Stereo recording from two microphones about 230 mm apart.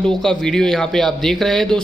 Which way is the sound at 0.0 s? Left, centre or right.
Centre.